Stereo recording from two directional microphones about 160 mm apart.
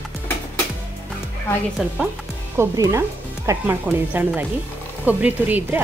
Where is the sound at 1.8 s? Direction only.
Centre (ahead or behind).